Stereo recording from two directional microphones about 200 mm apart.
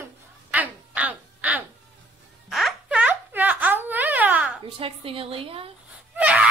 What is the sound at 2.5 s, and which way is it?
Wail, centre (ahead or behind).